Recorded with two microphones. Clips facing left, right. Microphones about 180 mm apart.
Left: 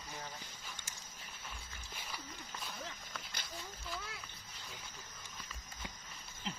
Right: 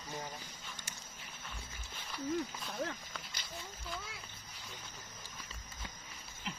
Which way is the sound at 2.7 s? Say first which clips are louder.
Right 8 dB; 60° right (ahead or behind).